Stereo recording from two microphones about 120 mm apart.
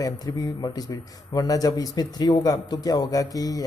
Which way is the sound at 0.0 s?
30° left (ahead or behind).